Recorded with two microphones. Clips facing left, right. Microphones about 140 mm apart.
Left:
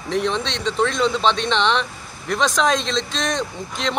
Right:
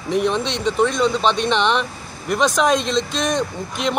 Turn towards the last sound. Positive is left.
turn(degrees=-5)  # may be behind; listen again after turning